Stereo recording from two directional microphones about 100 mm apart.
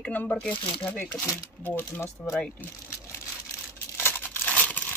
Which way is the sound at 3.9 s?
20° left (ahead or behind).